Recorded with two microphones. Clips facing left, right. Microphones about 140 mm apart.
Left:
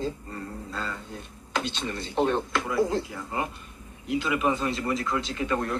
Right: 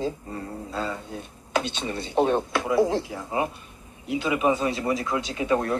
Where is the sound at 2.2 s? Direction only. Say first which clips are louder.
Right 3 dB; 10° right (ahead or behind).